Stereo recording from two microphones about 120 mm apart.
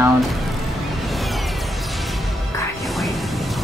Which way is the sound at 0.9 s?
Centre (ahead or behind).